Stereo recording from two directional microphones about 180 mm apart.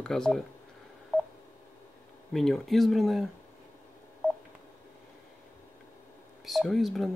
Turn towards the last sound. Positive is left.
turn(degrees=0)  # may be behind; listen again after turning